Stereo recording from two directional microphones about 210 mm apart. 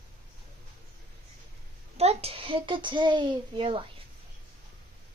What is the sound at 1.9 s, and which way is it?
A child's voice, 30° right (ahead or behind).